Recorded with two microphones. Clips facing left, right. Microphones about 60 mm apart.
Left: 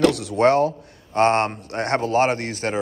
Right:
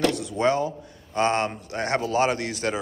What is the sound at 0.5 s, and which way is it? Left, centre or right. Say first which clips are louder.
A man's voice: left 5 dB; left.